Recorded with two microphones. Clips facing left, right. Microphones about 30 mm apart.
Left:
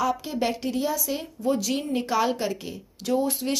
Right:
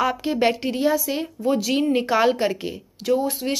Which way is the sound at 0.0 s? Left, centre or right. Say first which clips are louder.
Right 5 dB; right.